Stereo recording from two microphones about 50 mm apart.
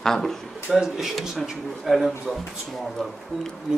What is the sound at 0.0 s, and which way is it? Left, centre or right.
Speech, centre.